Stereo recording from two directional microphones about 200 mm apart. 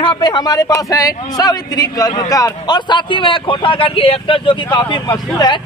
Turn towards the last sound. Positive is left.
turn(degrees=20)  # may be behind; listen again after turning